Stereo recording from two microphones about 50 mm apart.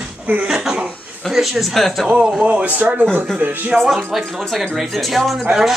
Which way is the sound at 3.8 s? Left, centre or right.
Centre.